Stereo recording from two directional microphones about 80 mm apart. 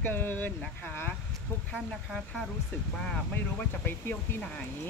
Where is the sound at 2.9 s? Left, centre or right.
Centre.